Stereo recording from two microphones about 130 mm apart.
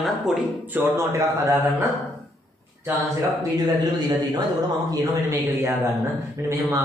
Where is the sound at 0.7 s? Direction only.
15° right (ahead or behind).